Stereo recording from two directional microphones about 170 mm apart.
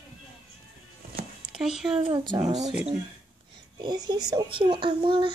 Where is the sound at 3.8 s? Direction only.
25° right (ahead or behind).